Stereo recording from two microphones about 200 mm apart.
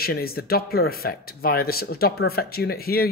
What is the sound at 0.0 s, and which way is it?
Speech, 50° left (ahead or behind).